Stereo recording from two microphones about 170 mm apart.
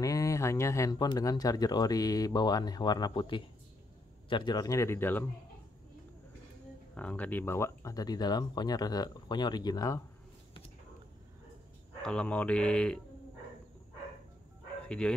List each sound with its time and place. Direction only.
0.0 s speech: 20° left (ahead or behind)
7.0 s speech: 10° left (ahead or behind)
12.0 s speech: 5° left (ahead or behind)
14.9 s speech: 5° left (ahead or behind)